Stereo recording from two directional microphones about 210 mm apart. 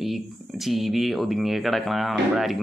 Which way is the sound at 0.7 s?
Centre (ahead or behind).